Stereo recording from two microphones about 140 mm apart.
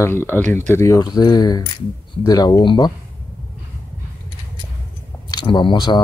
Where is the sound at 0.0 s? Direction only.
15° left (ahead or behind).